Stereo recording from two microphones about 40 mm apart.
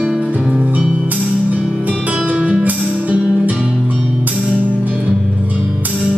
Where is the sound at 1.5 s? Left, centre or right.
Right.